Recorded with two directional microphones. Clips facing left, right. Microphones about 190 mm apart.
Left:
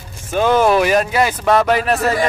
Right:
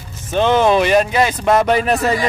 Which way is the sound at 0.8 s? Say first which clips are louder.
Right 1 dB; 5° left (ahead or behind).